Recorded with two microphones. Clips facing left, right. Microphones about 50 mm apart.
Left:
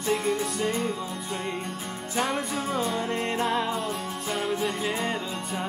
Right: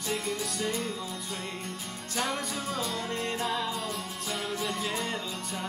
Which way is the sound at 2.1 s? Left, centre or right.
Centre.